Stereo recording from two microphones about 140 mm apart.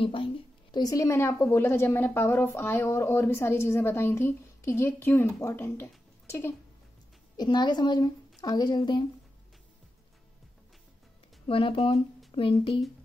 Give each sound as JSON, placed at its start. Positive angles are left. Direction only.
{"t": 0.0, "sound": "a woman's voice", "side_deg": 40}
{"t": 7.3, "sound": "a woman's voice", "side_deg": 30}
{"t": 11.4, "sound": "a woman's voice", "side_deg": 40}